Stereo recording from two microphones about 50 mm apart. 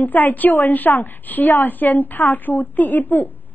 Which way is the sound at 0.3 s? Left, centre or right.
Left.